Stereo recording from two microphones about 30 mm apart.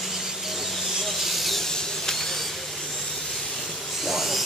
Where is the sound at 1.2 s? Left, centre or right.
Centre.